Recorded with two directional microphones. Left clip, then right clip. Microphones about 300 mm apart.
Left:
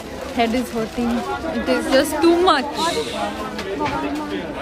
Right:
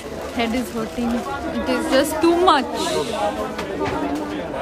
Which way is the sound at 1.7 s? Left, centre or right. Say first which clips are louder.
Left 1 dB; centre.